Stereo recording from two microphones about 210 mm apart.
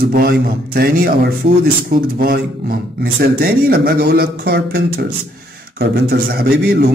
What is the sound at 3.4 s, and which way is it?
A man's voice, 45° right (ahead or behind).